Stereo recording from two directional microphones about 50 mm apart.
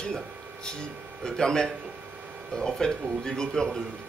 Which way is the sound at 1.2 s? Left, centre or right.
Centre.